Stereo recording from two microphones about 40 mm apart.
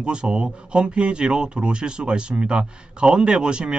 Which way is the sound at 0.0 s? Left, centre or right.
Right.